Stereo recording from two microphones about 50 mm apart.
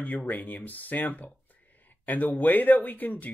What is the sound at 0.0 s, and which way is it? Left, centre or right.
Speech, left.